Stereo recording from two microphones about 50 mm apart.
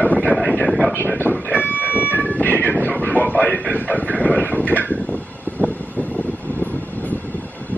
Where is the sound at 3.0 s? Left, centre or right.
Left.